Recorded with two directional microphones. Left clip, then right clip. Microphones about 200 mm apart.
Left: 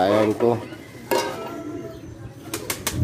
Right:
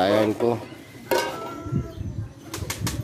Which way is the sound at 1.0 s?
20° right (ahead or behind).